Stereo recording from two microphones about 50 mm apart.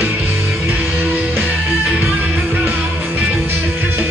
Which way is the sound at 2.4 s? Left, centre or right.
Right.